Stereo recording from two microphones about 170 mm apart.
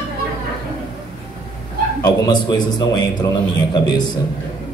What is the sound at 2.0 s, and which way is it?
A man's voice, 25° left (ahead or behind).